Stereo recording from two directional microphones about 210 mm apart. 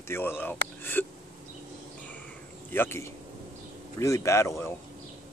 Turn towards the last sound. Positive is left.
turn(degrees=15)  # may be behind; listen again after turning